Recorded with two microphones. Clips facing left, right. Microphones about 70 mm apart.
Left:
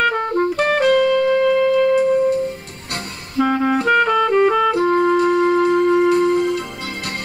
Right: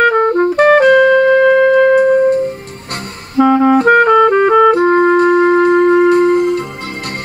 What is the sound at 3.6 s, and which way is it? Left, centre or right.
Clarinet, right.